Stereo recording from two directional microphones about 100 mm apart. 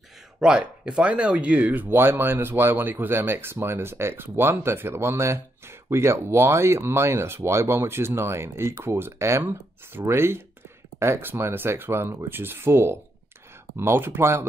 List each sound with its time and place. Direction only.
0.4 s speech: 10° right (ahead or behind); by 14.5 s 25° right (ahead or behind)